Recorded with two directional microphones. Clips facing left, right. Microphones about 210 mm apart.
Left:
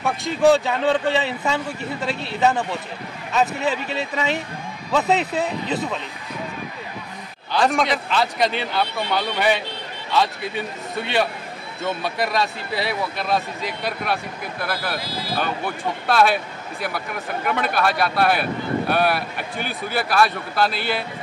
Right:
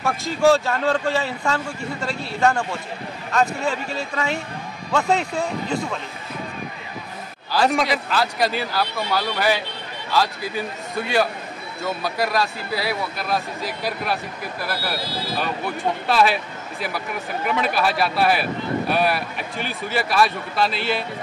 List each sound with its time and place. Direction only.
0.0 s speech: centre (ahead or behind)
5.0 s speech: 20° left (ahead or behind)
5.3 s speech: 5° left (ahead or behind)
7.5 s speech: centre (ahead or behind)
11.8 s speech: centre (ahead or behind)
17.5 s speech: centre (ahead or behind)